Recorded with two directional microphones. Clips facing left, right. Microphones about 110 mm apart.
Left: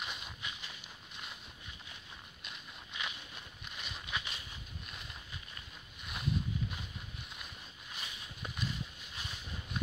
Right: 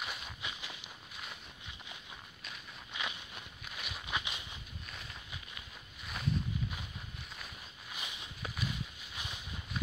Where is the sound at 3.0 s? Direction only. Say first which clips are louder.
Right 2 dB; 15° right (ahead or behind).